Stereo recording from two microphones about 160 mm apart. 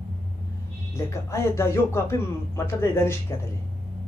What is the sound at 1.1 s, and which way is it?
Speech, 15° left (ahead or behind).